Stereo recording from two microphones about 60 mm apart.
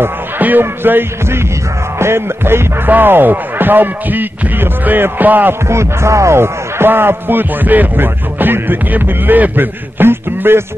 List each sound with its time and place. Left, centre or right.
0.4 s speech: right
2.0 s music: right
2.9 s speech: right
5.7 s speech: right